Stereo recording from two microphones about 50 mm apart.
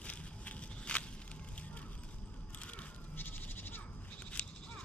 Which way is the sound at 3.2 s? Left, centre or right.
Left.